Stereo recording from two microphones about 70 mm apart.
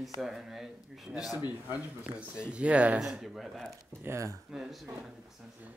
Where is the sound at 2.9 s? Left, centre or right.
Centre.